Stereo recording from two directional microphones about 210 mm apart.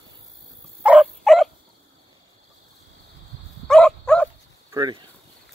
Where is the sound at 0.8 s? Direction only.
Centre (ahead or behind).